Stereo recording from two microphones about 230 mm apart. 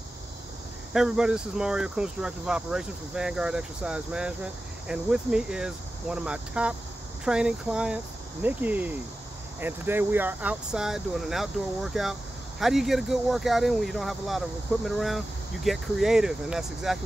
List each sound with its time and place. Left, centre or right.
0.9 s speech: centre